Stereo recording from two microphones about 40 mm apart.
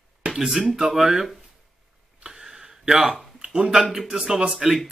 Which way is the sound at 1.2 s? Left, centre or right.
Centre.